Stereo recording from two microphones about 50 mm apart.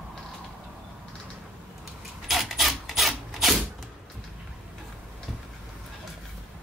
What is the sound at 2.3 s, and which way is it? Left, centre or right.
Wood, centre.